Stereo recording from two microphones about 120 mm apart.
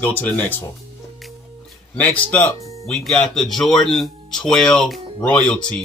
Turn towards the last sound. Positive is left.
turn(degrees=10)  # may be behind; listen again after turning